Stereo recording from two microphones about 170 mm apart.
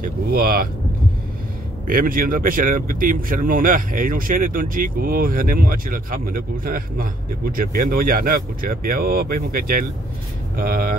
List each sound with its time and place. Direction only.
0.0 s speech: 60° right (ahead or behind)
1.9 s speech: 55° right (ahead or behind)